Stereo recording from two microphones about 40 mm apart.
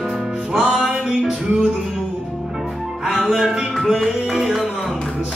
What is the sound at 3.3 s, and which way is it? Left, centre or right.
Music, centre.